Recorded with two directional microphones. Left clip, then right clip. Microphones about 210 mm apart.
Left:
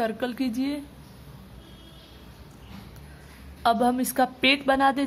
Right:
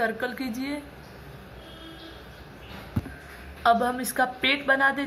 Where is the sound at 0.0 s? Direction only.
50° left (ahead or behind).